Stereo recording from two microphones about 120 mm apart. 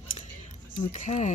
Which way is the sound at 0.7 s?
90° left.